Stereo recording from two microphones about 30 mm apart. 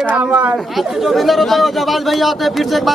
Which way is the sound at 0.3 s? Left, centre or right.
Right.